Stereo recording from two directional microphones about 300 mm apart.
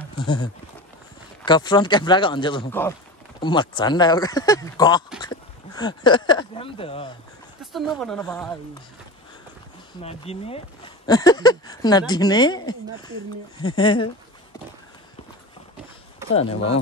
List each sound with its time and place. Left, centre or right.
0.2 s speech: centre
5.2 s a sound: centre
7.7 s speech: centre
10.0 s speech: centre
16.3 s speech: centre